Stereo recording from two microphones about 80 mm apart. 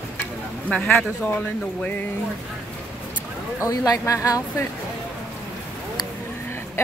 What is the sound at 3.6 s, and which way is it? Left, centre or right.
Speech, left.